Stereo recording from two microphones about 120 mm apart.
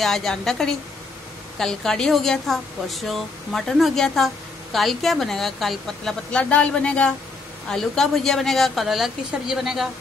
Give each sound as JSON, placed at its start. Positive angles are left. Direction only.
{"t": 0.0, "sound": "a woman's voice", "side_deg": 5}